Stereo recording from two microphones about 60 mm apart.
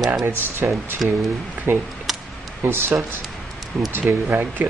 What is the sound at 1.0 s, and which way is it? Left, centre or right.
Speech, centre.